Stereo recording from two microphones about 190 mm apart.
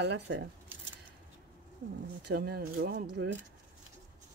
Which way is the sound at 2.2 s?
55° right (ahead or behind).